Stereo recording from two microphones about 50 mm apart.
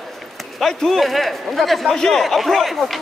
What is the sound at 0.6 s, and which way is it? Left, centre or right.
Speech, centre.